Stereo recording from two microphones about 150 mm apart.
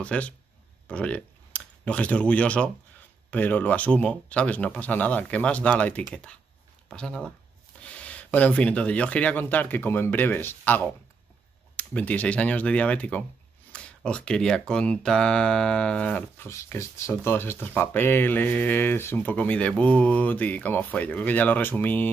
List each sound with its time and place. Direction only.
0.0 s speech: 10° left (ahead or behind)